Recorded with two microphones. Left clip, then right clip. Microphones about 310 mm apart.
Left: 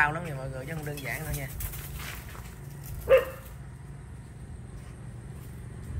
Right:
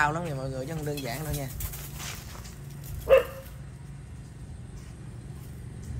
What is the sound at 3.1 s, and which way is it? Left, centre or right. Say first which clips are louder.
Dog: right 1 dB; right.